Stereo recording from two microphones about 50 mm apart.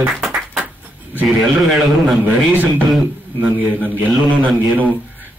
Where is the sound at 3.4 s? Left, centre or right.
Right.